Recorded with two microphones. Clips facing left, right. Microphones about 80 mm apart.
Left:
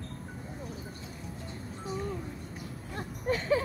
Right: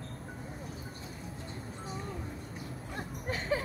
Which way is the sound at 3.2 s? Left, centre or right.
Right.